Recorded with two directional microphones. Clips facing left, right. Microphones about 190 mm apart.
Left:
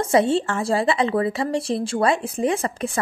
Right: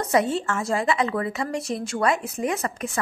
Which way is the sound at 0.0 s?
30° left (ahead or behind).